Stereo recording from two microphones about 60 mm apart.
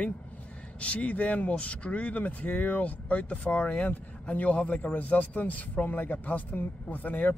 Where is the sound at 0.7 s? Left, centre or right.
Left.